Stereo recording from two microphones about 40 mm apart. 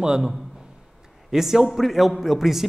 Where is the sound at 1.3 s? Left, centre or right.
Centre.